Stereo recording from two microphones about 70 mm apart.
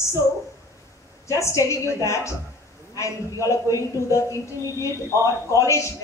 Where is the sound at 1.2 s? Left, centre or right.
Left.